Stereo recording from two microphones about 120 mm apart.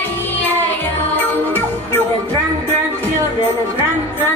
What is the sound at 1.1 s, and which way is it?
Music, 15° left (ahead or behind).